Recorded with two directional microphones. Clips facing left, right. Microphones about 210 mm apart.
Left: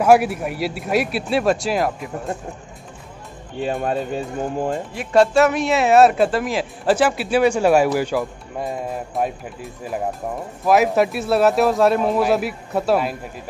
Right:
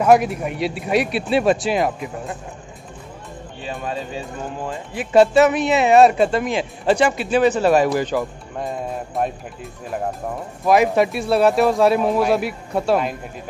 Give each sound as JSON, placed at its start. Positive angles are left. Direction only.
{"t": 0.0, "sound": "speech", "side_deg": 5}
{"t": 3.6, "sound": "speech", "side_deg": 50}
{"t": 4.9, "sound": "speech", "side_deg": 0}